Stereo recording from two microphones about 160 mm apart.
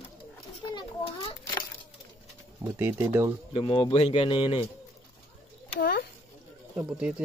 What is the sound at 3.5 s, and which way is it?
Speech, 30° left (ahead or behind).